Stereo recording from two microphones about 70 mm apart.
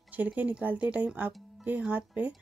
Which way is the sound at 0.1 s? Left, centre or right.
Right.